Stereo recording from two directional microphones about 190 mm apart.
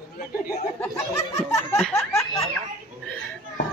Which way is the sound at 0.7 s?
15° left (ahead or behind).